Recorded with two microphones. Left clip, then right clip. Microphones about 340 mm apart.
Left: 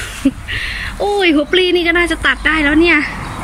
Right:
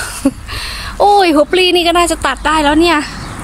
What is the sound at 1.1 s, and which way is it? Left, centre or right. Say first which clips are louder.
A woman's voice: right 1 dB; centre.